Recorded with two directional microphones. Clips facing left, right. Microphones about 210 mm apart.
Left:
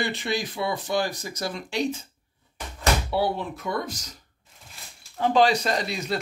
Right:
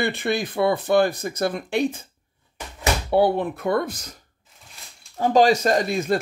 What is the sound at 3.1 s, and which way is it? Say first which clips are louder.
Speech: right 7 dB; 55° right (ahead or behind).